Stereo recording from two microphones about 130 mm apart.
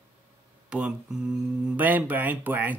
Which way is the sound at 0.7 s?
10° right (ahead or behind).